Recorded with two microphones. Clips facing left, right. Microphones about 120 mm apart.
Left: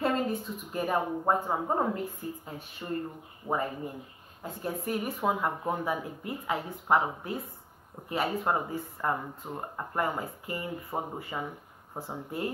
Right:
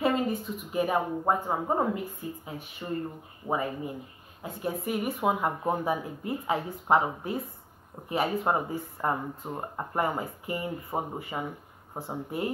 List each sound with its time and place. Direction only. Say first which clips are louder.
0.0 s speech: right 2 dB; 10° right (ahead or behind)